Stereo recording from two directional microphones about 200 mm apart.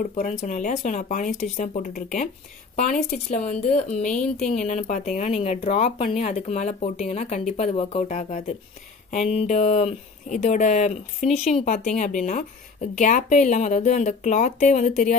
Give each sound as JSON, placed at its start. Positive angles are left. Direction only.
{"t": 0.1, "sound": "speech", "side_deg": 35}
{"t": 3.3, "sound": "speech", "side_deg": 35}